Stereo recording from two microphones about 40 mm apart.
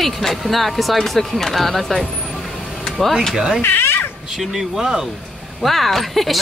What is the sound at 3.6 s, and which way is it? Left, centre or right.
Cat, left.